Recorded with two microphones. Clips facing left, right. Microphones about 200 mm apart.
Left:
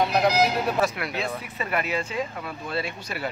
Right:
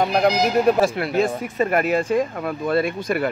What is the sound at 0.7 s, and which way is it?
Speech, 30° right (ahead or behind).